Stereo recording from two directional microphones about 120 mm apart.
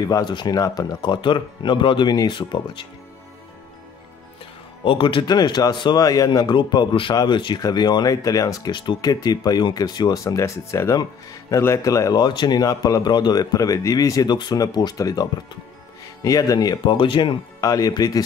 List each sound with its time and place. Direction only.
0.0 s a man's voice: 35° left (ahead or behind)
4.8 s a man's voice: 45° left (ahead or behind); by 8.7 s 30° left (ahead or behind)
8.7 s a man's voice: 40° left (ahead or behind)
16.3 s a man's voice: 30° left (ahead or behind)
16.9 s speech: 45° left (ahead or behind)
17.6 s a man's voice: 30° left (ahead or behind)